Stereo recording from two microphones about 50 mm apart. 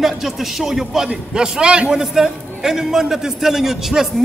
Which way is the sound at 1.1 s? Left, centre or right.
Centre.